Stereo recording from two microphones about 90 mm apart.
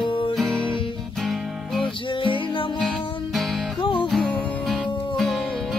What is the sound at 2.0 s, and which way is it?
Music, 70° left (ahead or behind).